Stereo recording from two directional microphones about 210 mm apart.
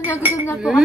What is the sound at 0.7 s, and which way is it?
Speech, 5° right (ahead or behind).